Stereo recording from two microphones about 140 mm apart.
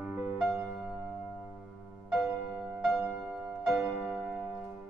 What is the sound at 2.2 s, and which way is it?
Music, 20° right (ahead or behind).